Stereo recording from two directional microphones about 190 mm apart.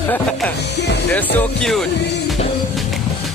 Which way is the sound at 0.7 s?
60° left (ahead or behind).